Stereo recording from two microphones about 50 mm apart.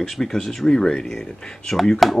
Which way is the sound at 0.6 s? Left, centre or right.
Centre.